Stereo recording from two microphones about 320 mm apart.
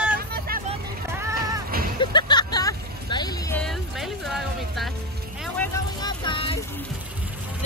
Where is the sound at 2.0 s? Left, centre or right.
Centre.